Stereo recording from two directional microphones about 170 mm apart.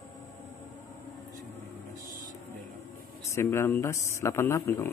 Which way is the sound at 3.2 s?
15° left (ahead or behind).